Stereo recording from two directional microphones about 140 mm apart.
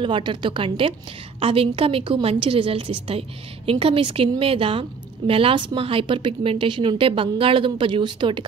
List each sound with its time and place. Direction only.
0.0 s a woman's voice: 35° right (ahead or behind)